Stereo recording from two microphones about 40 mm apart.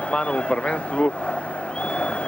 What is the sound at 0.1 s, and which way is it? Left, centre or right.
Speech, left.